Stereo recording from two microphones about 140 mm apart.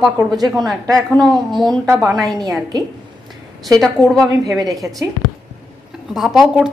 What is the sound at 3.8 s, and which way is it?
Speech, centre (ahead or behind).